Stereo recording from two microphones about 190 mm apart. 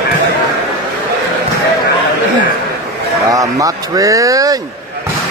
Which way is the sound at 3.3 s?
15° right (ahead or behind).